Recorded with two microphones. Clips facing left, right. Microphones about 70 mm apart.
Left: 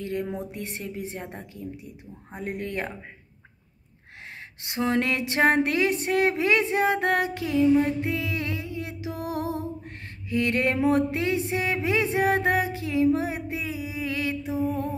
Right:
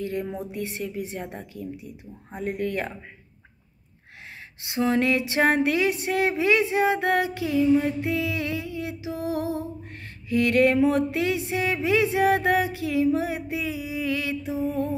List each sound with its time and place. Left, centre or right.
0.0 s speech: left
0.5 s music: left
1.2 s a woman's voice: left
2.3 s music: left
4.6 s music: left